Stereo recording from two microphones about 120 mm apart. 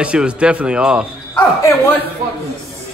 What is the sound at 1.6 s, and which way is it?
Speech, 20° left (ahead or behind).